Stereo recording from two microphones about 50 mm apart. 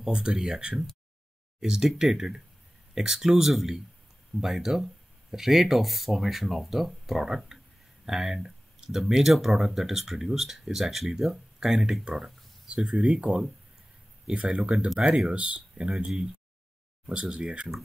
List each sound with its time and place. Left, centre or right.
0.1 s speech: centre
12.6 s speech: centre
15.0 s speech: centre
17.1 s speech: right